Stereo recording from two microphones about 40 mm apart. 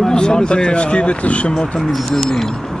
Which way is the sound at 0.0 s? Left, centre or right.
Centre.